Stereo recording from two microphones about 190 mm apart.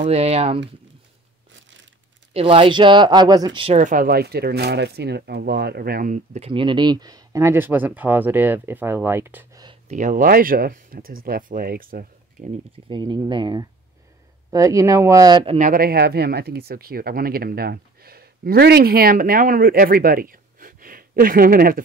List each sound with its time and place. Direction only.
0.0 s speech: 35° right (ahead or behind)
2.3 s speech: 30° right (ahead or behind)
3.7 s speech: 45° right (ahead or behind)
6.5 s speech: 25° right (ahead or behind)
9.8 s speech: 40° right (ahead or behind)
12.8 s speech: 25° right (ahead or behind)
15.4 s speech: 40° right (ahead or behind)